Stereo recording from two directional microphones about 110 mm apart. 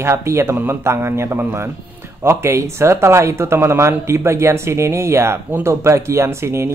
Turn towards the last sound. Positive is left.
turn(degrees=-25)  # may be behind; listen again after turning